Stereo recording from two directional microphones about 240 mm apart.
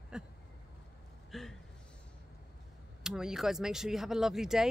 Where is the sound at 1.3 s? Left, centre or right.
Centre.